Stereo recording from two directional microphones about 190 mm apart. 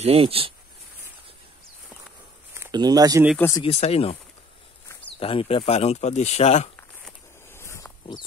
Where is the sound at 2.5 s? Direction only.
15° right (ahead or behind).